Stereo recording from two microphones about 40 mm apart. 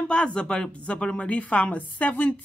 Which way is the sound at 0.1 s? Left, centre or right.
Left.